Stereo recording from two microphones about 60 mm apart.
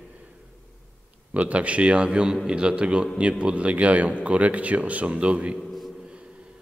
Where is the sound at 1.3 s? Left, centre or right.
Right.